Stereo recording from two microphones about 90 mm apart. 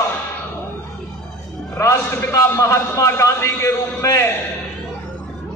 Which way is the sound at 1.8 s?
30° left (ahead or behind).